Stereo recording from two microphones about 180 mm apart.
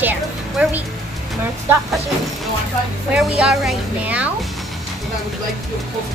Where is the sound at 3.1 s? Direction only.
5° right (ahead or behind).